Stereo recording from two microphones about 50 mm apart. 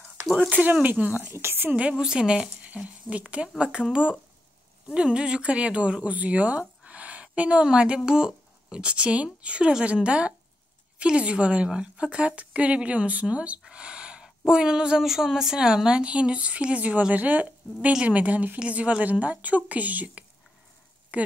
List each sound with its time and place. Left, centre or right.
0.8 s a woman's voice: right
1.3 s a woman's voice: right
1.8 s speech: centre
6.8 s a sound: right
7.6 s speech: right
13.7 s a sound: centre
14.5 s a woman's voice: centre